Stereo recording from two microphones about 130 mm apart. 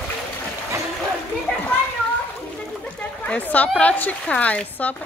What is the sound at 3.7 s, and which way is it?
Speech, 10° left (ahead or behind).